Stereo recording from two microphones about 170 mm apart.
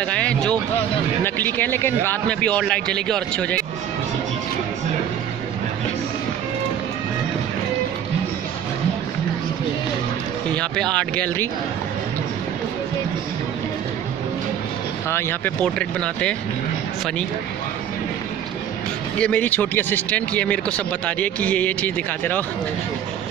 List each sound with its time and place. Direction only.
0.0 s speech: 5° left (ahead or behind)
10.5 s speech: 5° left (ahead or behind)
15.0 s speech: 15° left (ahead or behind)
19.1 s speech: 5° left (ahead or behind)